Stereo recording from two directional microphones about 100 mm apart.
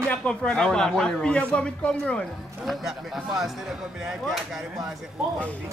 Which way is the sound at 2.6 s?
Centre (ahead or behind).